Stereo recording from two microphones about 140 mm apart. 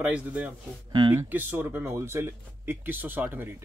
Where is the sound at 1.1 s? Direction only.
15° right (ahead or behind).